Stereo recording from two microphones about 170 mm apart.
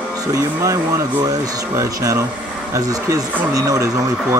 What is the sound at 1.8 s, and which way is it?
Speech, 15° right (ahead or behind).